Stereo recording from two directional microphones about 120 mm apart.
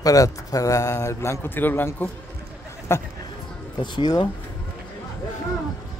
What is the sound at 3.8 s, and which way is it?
Speech, 35° left (ahead or behind).